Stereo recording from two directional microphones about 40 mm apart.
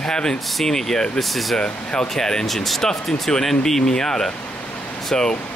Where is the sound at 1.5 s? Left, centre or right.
Left.